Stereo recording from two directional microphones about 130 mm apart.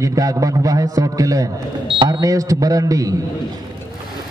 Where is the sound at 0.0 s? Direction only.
25° right (ahead or behind).